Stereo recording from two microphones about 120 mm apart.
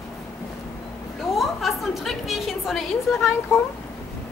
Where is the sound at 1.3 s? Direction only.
Centre (ahead or behind).